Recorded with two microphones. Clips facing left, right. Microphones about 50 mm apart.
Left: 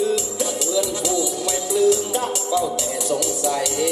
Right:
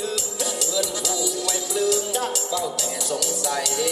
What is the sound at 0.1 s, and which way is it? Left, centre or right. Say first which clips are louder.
Music: left 5 dB; left.